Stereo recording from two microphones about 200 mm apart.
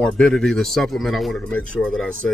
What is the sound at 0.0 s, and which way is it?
Speech, 5° left (ahead or behind).